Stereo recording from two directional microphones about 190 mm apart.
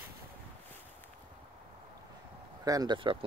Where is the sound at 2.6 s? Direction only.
20° right (ahead or behind).